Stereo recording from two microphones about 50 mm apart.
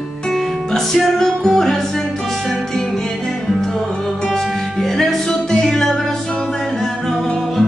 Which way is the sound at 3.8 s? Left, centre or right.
Centre.